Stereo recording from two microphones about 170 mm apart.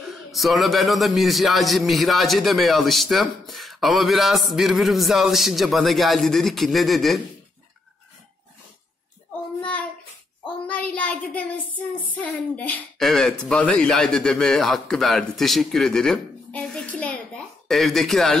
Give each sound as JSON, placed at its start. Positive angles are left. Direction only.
{"t": 0.3, "sound": "a man's voice", "side_deg": 0}
{"t": 9.6, "sound": "child singing", "side_deg": 10}
{"t": 10.7, "sound": "a sound", "side_deg": 5}
{"t": 12.1, "sound": "a man's voice", "side_deg": 10}